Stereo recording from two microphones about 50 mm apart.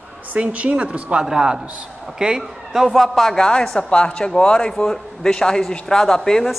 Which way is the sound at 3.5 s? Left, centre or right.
Centre.